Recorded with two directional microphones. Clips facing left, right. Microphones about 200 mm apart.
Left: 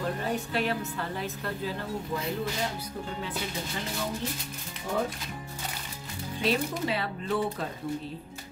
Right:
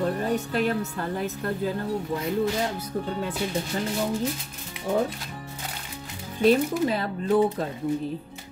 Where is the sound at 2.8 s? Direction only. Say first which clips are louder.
Right 7 dB; 45° right (ahead or behind).